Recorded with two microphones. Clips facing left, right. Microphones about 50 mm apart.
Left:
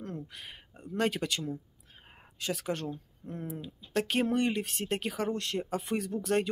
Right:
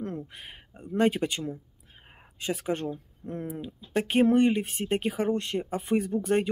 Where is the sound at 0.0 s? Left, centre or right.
Right; by 2.3 s centre.